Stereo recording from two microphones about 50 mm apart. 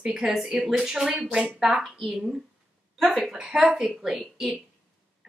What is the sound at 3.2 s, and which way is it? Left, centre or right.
A woman's voice, centre.